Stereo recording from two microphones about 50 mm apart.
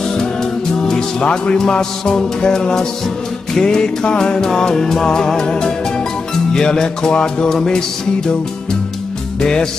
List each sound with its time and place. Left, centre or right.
0.1 s music: centre
9.4 s music: centre